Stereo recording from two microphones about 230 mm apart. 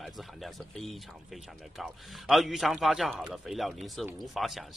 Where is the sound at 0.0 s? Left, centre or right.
Centre.